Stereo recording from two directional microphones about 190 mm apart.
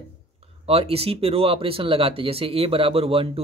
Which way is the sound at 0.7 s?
30° right (ahead or behind).